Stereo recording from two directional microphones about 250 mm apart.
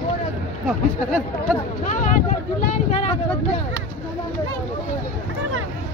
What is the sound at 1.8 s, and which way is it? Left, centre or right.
Vehicle, left.